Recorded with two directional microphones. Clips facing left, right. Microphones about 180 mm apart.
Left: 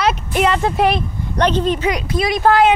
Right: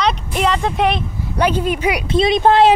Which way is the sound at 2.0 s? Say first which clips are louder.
Right 5 dB; 25° right (ahead or behind).